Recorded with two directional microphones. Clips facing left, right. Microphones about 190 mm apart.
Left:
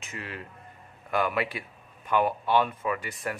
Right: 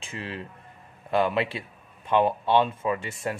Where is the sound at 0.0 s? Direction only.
30° right (ahead or behind).